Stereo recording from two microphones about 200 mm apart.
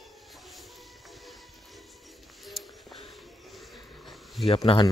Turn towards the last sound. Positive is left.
turn(degrees=25)  # may be behind; listen again after turning